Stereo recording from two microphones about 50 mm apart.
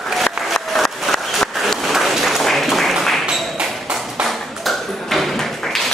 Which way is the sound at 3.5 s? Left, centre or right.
Centre.